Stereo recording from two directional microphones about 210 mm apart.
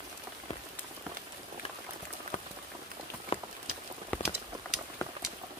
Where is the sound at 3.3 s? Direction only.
25° left (ahead or behind).